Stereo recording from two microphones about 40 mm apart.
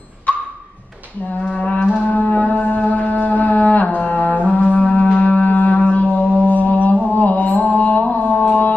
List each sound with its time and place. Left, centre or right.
1.5 s music: left
2.0 s a sound: left
4.1 s music: left
7.2 s mantra: left